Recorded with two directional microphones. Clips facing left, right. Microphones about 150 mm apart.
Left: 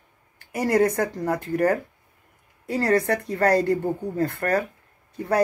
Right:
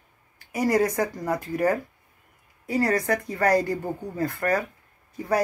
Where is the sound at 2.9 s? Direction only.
65° left (ahead or behind).